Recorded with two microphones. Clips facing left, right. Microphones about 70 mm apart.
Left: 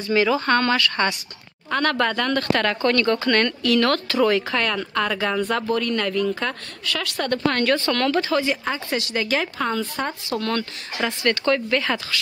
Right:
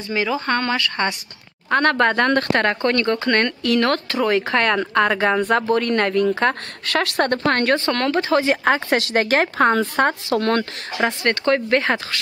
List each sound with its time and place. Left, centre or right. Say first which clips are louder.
0.1 s speech: left 2 dB; centre
1.0 s a woman's voice: even; right
2.6 s speech: right 1 dB; right
4.5 s speech: right 5 dB; right
4.7 s speech: right 5 dB; right
5.8 s a woman's voice: right 4 dB; right
8.2 s a woman's voice: right 4 dB; right
10.4 s a woman's voice: right 5 dB; right
11.2 s speech: even; right
11.8 s a woman's voice: right 3 dB; right